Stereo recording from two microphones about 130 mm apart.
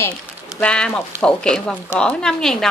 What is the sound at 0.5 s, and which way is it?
Speech, 10° left (ahead or behind).